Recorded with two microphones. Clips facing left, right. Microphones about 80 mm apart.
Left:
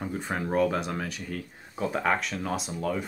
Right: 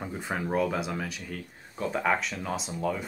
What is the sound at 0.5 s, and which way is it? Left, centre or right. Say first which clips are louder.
Speech: left 3 dB; centre.